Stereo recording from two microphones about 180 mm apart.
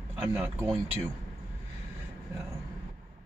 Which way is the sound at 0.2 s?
10° right (ahead or behind).